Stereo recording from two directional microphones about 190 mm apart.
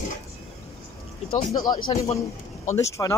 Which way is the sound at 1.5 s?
25° left (ahead or behind).